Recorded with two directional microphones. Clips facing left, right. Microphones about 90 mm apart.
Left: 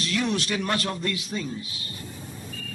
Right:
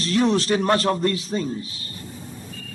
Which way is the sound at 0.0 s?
35° right (ahead or behind).